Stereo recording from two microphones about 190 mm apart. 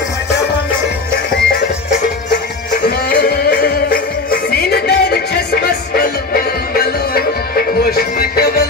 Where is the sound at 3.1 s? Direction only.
55° left (ahead or behind).